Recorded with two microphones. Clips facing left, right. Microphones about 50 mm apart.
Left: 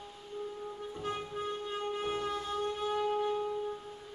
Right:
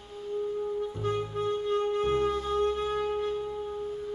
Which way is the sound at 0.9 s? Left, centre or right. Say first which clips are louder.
Right 7 dB; centre.